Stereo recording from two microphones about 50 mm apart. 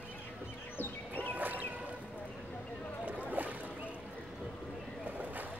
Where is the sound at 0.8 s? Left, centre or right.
Left.